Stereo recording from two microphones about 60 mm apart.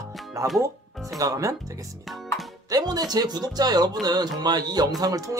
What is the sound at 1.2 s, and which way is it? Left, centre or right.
Speech, right.